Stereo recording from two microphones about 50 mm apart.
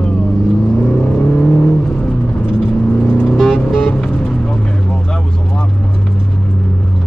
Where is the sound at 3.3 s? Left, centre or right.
Centre.